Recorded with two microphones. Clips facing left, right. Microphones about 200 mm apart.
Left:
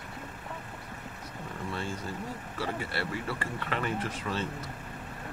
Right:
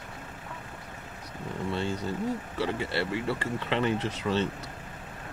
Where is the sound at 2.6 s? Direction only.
25° right (ahead or behind).